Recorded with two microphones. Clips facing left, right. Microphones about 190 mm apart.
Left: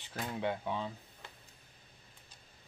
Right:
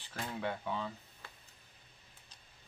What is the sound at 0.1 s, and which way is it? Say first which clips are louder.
Speech: left 2 dB; 5° left (ahead or behind).